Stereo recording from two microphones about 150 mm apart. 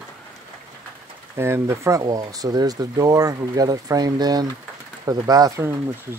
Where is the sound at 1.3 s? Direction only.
15° right (ahead or behind).